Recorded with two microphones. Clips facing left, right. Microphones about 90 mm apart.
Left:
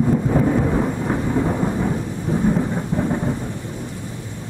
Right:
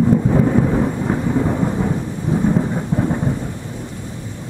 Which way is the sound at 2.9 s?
15° right (ahead or behind).